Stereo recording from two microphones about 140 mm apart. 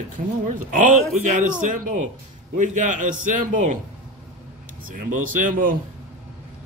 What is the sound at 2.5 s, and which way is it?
A man's voice, 60° right (ahead or behind).